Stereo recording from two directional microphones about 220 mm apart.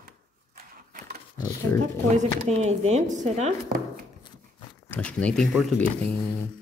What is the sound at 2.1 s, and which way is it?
Chopping, 30° right (ahead or behind).